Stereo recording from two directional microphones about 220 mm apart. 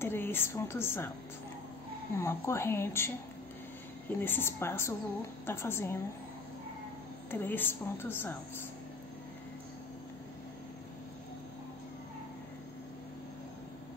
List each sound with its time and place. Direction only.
0.0 s a woman's voice: 10° left (ahead or behind)
2.1 s a woman's voice: 10° left (ahead or behind)
4.2 s a woman's voice: 10° left (ahead or behind)
7.2 s a woman's voice: 10° left (ahead or behind)